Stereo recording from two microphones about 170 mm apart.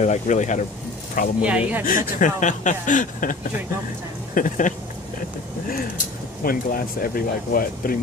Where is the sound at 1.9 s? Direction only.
50° left (ahead or behind).